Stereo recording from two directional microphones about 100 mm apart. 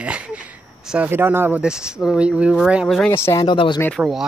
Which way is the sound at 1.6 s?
10° right (ahead or behind).